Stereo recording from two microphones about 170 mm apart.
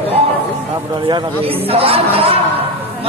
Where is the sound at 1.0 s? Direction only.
30° right (ahead or behind).